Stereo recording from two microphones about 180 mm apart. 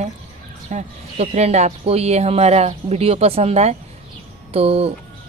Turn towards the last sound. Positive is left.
turn(degrees=-35)  # may be behind; listen again after turning